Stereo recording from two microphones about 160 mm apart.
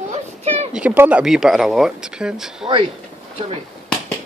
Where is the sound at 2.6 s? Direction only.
35° right (ahead or behind).